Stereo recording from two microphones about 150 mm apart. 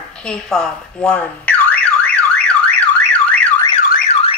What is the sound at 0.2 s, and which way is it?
Alarm, 5° left (ahead or behind).